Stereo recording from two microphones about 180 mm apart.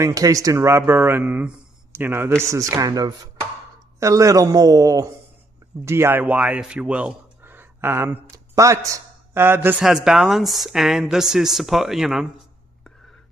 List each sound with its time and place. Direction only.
0.0 s a man's voice: 20° right (ahead or behind); by 12.9 s centre (ahead or behind)